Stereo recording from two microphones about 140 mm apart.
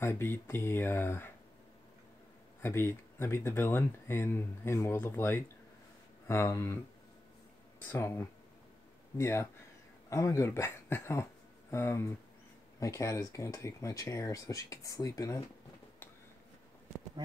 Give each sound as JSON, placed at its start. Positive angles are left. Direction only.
{"t": 0.0, "sound": "speech", "side_deg": 15}
{"t": 2.6, "sound": "speech", "side_deg": 15}
{"t": 7.8, "sound": "speech", "side_deg": 15}